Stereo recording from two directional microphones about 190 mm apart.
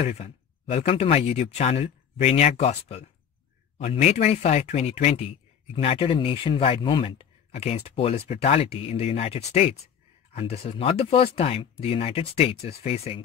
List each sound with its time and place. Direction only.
0.0 s speech: 35° left (ahead or behind)